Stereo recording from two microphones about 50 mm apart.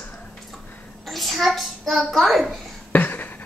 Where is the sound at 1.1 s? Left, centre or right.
Centre.